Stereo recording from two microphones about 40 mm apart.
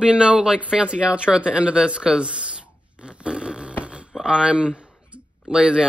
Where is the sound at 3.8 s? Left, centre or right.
Right.